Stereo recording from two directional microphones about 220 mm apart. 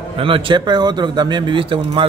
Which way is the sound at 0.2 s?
25° right (ahead or behind).